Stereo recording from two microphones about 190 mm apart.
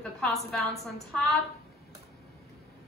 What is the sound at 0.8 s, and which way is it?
Speech, centre (ahead or behind).